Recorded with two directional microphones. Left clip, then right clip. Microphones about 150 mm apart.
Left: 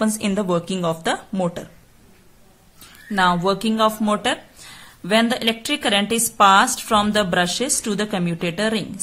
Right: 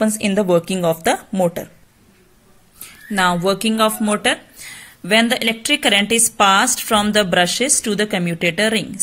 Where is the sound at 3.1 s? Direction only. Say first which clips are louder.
Right 1 dB; 15° right (ahead or behind).